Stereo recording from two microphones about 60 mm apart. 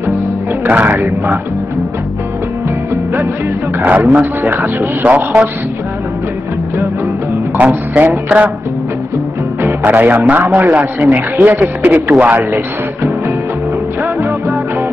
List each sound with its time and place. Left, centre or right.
0.7 s a man's voice: right
3.8 s a man's voice: right
7.5 s speech: right
9.8 s a man's voice: right
14.0 s music: right